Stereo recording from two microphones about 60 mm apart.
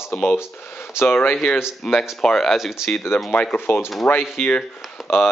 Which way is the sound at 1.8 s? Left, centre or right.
Centre.